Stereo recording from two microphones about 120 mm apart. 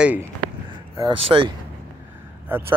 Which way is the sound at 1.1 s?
50° right (ahead or behind).